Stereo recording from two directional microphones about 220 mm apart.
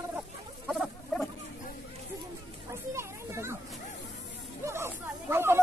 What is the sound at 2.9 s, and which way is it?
Children playing, 10° right (ahead or behind).